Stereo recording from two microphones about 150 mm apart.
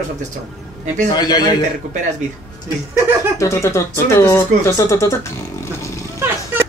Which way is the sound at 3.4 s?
20° left (ahead or behind).